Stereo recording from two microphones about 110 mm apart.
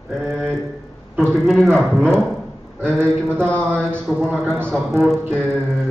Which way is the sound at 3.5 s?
10° left (ahead or behind).